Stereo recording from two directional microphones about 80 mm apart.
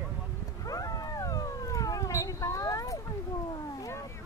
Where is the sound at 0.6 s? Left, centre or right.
Left.